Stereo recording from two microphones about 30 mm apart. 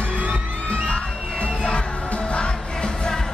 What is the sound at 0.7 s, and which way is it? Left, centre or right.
Music, left.